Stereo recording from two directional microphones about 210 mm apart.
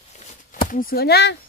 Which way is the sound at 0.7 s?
40° left (ahead or behind).